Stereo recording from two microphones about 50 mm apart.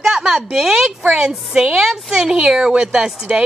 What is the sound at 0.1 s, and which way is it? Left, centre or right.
A woman's voice, centre.